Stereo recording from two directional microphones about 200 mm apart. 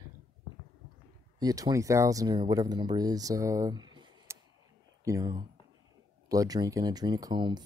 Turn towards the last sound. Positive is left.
turn(degrees=-20)  # may be behind; listen again after turning